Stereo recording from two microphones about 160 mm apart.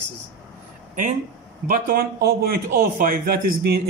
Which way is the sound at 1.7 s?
65° right (ahead or behind).